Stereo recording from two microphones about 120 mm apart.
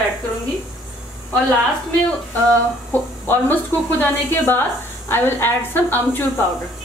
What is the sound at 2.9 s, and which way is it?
A woman's voice, 15° left (ahead or behind).